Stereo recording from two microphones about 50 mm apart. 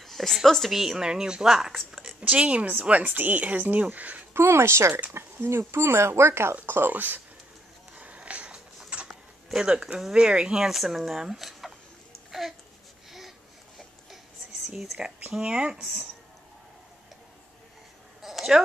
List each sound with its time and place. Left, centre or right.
0.0 s a sound: centre
0.5 s speech: centre
1.9 s a sound: centre
2.2 s a woman's voice: right
3.0 s speech: right
4.3 s speech: right
6.5 s speech: right
6.9 s speech: right
8.0 s a sound: right
9.5 s speech: centre
12.3 s babbling: centre
14.7 s speech: centre
15.3 s speech: centre
18.2 s a sound: centre